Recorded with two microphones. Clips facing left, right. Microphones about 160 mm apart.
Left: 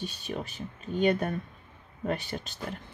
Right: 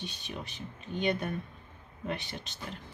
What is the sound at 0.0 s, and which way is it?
Speech, 40° left (ahead or behind).